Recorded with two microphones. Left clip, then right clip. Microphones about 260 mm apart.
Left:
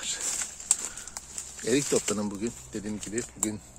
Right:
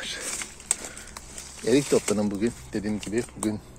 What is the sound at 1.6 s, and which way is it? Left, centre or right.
Speech, centre.